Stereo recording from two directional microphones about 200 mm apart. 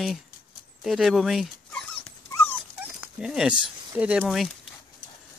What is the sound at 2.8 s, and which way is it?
Speech, 5° right (ahead or behind).